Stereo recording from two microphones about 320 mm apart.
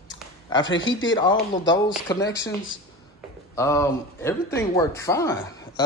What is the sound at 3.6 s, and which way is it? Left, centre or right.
Speech, centre.